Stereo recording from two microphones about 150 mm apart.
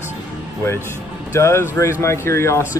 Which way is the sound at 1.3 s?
20° left (ahead or behind).